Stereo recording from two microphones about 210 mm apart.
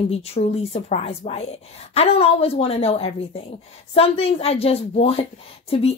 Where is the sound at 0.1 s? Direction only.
30° left (ahead or behind).